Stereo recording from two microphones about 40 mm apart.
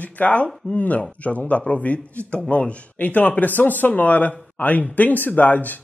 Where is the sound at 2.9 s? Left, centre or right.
Left.